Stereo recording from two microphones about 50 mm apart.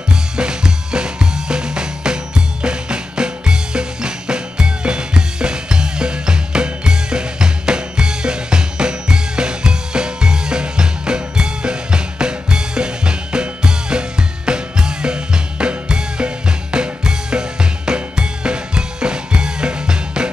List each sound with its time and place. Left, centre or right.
0.1 s drum kit: centre